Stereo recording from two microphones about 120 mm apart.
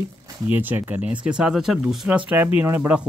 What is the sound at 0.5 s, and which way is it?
Speech, 15° right (ahead or behind).